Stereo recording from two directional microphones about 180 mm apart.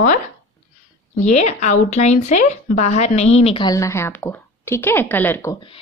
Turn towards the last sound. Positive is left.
turn(degrees=15)  # may be behind; listen again after turning